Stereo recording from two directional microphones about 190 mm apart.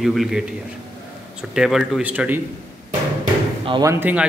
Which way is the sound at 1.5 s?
Centre (ahead or behind).